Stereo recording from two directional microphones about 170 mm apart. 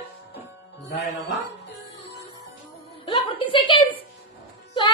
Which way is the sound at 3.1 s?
30° left (ahead or behind).